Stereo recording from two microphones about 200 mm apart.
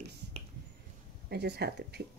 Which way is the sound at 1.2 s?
55° right (ahead or behind).